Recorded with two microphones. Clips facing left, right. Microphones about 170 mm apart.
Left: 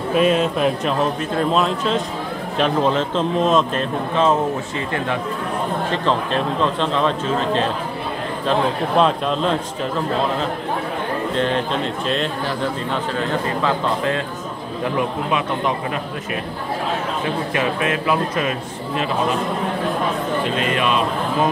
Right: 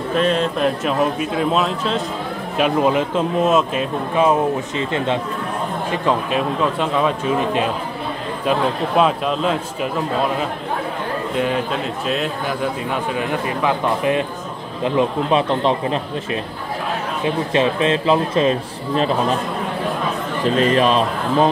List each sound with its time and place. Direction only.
0.1 s speech: 5° left (ahead or behind); by 5.2 s 20° right (ahead or behind)
5.9 s speech: 10° right (ahead or behind)
11.3 s speech: 10° right (ahead or behind)
13.1 s a man's voice: 15° right (ahead or behind)
17.5 s a man's voice: 25° right (ahead or behind)
20.4 s a man's voice: 35° right (ahead or behind)